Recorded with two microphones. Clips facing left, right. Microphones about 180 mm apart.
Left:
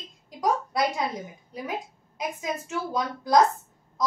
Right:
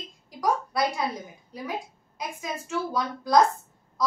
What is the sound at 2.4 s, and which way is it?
A woman's voice, 20° left (ahead or behind).